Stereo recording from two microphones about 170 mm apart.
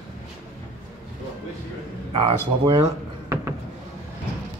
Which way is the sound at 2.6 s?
25° right (ahead or behind).